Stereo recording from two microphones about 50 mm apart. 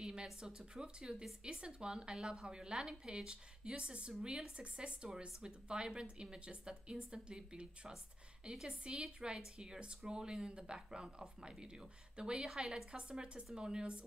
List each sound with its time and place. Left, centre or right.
0.0 s speech: centre
12.9 s speech: centre